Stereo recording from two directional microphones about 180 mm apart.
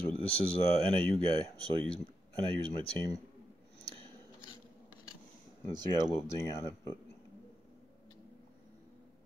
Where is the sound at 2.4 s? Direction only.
25° right (ahead or behind).